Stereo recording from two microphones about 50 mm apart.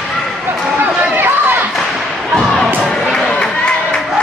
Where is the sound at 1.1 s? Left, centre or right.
Right.